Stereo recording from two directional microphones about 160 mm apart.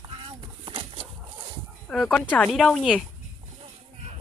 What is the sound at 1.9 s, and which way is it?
Speech, 5° left (ahead or behind).